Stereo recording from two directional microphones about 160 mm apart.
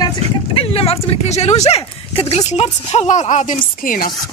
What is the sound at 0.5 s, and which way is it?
Speech, 40° left (ahead or behind).